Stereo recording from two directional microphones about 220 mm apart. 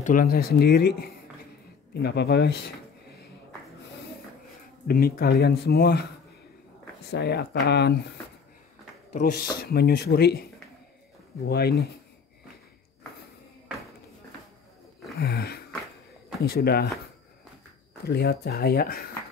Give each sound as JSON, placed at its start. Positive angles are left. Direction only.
{"t": 0.0, "sound": "speech", "side_deg": 40}
{"t": 4.8, "sound": "speech", "side_deg": 45}
{"t": 7.1, "sound": "speech", "side_deg": 50}
{"t": 9.1, "sound": "speech", "side_deg": 40}
{"t": 15.1, "sound": "a sound", "side_deg": 45}
{"t": 16.4, "sound": "speech", "side_deg": 45}
{"t": 18.0, "sound": "speech", "side_deg": 45}